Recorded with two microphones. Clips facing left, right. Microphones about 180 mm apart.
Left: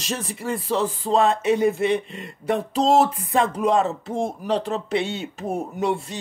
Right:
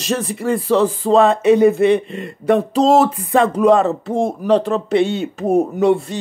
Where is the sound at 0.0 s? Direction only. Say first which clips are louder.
Right 8 dB; 70° right (ahead or behind).